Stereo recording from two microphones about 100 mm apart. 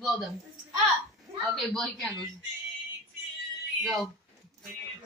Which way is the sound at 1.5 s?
5° left (ahead or behind).